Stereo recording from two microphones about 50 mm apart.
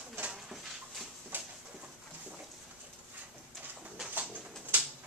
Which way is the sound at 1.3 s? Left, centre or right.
Right.